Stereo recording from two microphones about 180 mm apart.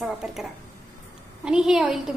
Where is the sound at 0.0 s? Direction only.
Centre (ahead or behind).